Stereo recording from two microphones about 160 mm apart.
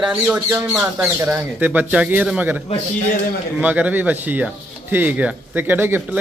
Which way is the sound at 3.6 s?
10° right (ahead or behind).